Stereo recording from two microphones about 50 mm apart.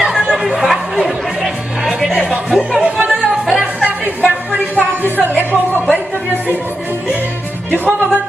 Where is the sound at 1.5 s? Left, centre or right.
Centre.